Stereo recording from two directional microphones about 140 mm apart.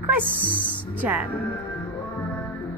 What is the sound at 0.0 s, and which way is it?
Music, 15° right (ahead or behind).